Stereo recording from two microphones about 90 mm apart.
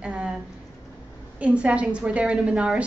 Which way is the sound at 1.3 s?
15° right (ahead or behind).